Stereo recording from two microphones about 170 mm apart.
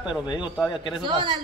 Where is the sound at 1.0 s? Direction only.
25° right (ahead or behind).